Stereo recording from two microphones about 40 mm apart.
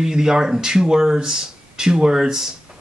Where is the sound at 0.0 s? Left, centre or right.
Centre.